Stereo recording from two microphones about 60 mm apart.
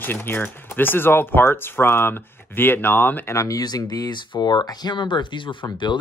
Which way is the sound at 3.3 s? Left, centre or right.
Left.